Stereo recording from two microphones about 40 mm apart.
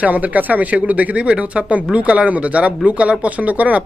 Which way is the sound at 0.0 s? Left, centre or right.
Right.